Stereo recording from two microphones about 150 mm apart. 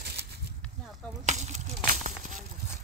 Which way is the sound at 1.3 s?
50° right (ahead or behind).